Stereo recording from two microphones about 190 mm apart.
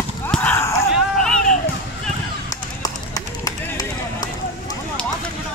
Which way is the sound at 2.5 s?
20° left (ahead or behind).